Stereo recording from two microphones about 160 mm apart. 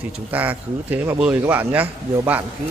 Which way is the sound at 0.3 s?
10° right (ahead or behind).